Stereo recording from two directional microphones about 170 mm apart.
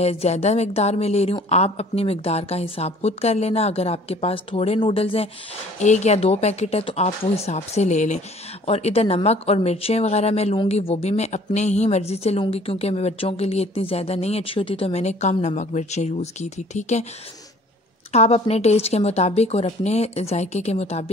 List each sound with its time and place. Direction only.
0.0 s speech: 40° left (ahead or behind)
18.1 s speech: 40° left (ahead or behind)